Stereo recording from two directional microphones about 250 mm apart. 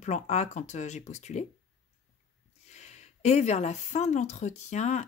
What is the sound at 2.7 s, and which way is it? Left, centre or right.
Speech, left.